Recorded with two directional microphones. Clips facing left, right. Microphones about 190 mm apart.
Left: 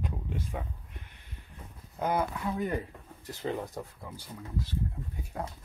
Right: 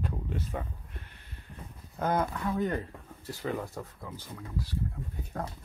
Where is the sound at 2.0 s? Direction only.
10° left (ahead or behind).